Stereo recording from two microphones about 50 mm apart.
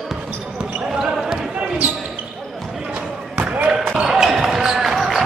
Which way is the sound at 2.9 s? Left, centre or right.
Right.